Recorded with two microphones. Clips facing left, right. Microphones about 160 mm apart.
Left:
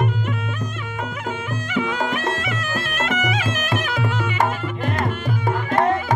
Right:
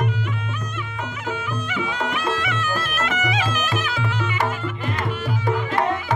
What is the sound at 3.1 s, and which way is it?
Music, 50° left (ahead or behind).